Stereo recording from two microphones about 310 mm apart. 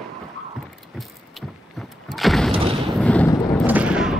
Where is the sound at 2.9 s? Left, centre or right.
Centre.